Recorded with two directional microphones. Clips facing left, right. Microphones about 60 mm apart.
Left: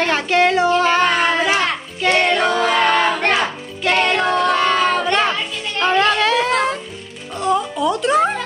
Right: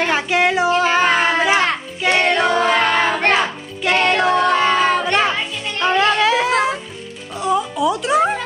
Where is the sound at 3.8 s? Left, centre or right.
Centre.